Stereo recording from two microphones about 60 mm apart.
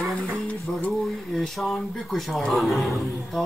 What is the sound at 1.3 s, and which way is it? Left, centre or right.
Speech, centre.